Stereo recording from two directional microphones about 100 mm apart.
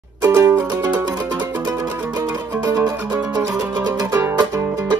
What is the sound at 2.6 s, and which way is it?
Music, 40° right (ahead or behind).